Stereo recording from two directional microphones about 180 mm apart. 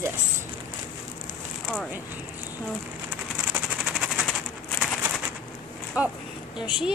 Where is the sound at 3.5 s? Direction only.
Centre (ahead or behind).